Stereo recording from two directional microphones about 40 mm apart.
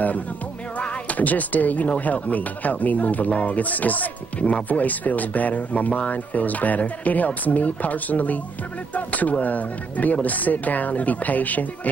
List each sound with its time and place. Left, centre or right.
0.7 s music: left
2.0 s speech: left